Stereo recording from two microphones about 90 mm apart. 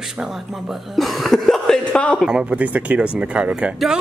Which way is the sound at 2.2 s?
10° right (ahead or behind).